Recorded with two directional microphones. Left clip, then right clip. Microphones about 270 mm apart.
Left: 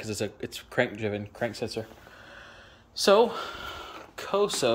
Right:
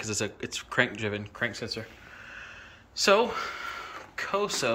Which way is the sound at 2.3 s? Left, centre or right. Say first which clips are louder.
Right 4 dB; left.